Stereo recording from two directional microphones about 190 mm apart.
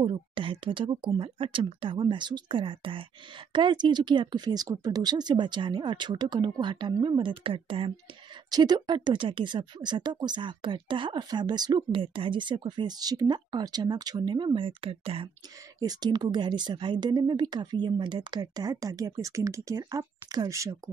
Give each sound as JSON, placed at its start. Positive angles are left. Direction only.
{"t": 0.0, "sound": "speech", "side_deg": -25}